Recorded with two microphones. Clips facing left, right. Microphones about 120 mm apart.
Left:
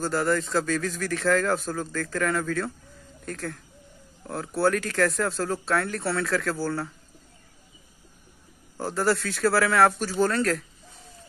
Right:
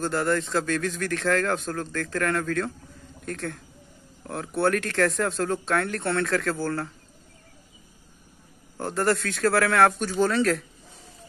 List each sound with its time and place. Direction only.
0.0 s a man's voice: centre (ahead or behind)
8.7 s a man's voice: 5° left (ahead or behind)